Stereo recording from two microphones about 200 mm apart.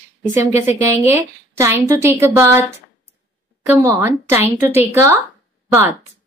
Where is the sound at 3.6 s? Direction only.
10° right (ahead or behind).